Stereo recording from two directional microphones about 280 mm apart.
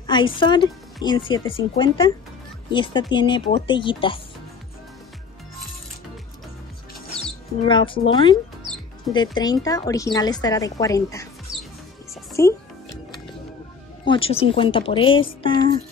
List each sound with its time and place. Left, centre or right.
0.0 s speech: centre
7.6 s speech: centre
12.3 s music: centre
14.0 s speech: centre